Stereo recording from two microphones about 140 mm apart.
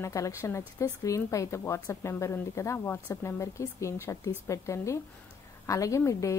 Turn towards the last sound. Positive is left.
turn(degrees=20)  # may be behind; listen again after turning